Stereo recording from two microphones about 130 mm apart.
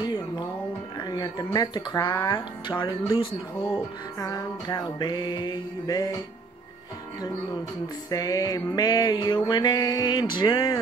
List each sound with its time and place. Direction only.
0.0 s music: 35° left (ahead or behind)
0.9 s mantra: 30° left (ahead or behind)
8.1 s mantra: 30° left (ahead or behind)